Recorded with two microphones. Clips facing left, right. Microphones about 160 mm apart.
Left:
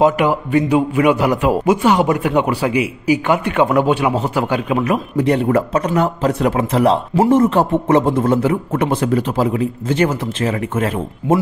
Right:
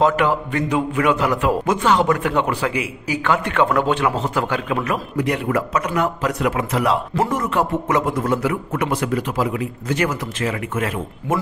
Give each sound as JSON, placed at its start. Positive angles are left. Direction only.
{"t": 0.0, "sound": "a man's voice", "side_deg": 15}
{"t": 5.1, "sound": "a man's voice", "side_deg": 30}